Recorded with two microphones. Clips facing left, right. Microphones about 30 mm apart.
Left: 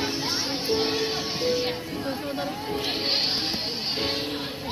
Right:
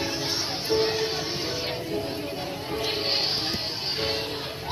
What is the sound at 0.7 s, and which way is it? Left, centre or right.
Speech, left.